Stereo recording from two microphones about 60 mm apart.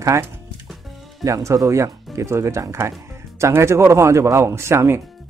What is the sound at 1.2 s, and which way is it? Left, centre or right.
Speech, right.